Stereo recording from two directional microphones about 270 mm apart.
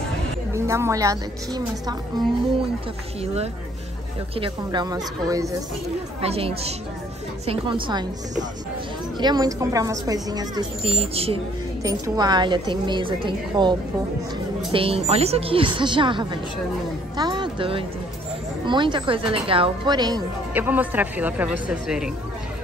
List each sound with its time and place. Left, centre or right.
0.5 s speech: centre
4.4 s speech: centre
9.2 s speech: centre